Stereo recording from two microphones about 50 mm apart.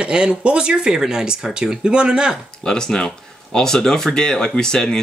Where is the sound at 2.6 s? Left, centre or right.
Centre.